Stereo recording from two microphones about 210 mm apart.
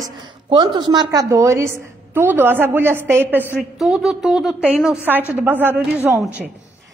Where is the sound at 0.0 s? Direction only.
20° right (ahead or behind).